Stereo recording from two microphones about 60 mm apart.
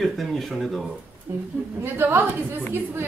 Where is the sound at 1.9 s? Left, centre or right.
Right.